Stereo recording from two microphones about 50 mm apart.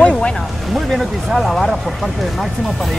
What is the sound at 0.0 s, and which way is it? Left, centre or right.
Music, left.